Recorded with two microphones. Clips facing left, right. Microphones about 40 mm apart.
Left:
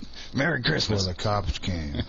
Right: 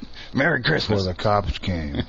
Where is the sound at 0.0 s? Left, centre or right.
Centre.